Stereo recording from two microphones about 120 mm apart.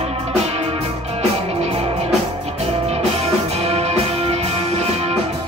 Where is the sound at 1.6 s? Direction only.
55° right (ahead or behind).